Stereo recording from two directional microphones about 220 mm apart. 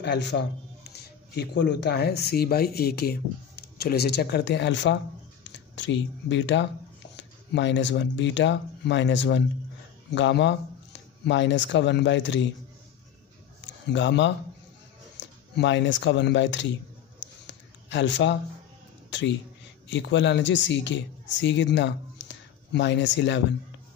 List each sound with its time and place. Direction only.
0.0 s speech: 50° left (ahead or behind)
13.9 s speech: 55° left (ahead or behind)
17.5 s a sound: 55° left (ahead or behind)
19.9 s speech: 55° left (ahead or behind)